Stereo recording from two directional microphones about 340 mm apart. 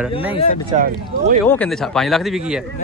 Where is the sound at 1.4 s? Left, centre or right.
Centre.